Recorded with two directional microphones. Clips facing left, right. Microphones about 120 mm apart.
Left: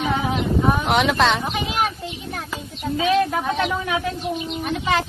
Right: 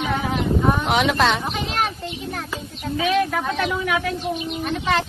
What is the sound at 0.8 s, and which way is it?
Speech, centre (ahead or behind).